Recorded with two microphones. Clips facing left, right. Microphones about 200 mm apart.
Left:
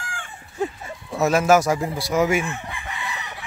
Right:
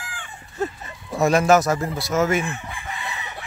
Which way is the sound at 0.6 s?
5° left (ahead or behind).